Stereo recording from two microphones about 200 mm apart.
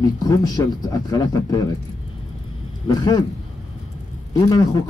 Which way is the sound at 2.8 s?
20° left (ahead or behind).